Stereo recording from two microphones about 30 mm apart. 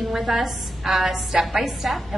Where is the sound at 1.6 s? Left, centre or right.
Centre.